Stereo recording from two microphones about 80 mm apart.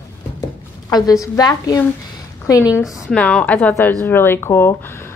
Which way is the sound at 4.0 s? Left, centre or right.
Left.